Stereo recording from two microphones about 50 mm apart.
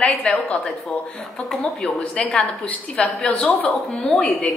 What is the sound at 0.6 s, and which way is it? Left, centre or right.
Speech, centre.